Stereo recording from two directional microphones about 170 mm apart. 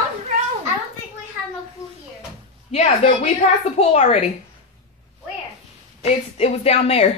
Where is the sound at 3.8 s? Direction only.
40° left (ahead or behind).